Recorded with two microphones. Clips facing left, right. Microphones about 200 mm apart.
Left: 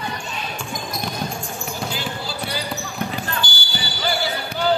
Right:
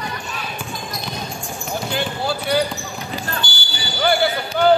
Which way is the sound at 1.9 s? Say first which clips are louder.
Right 6 dB; 60° right (ahead or behind).